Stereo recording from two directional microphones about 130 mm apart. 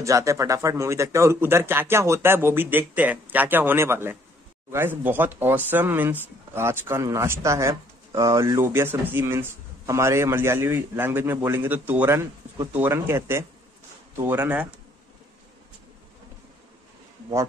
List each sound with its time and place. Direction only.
0.0 s speech: 25° right (ahead or behind)